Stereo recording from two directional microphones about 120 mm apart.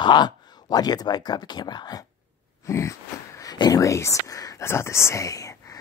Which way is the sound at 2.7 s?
25° left (ahead or behind).